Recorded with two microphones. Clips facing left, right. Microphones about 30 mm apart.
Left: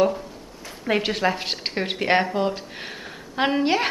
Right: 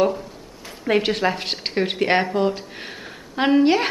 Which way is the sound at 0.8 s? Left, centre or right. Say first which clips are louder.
Right 2 dB; centre.